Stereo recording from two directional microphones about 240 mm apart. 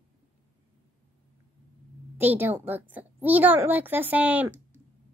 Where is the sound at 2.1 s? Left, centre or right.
Centre.